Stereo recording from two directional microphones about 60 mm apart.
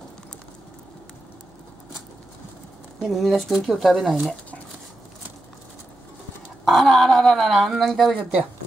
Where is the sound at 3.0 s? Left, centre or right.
Centre.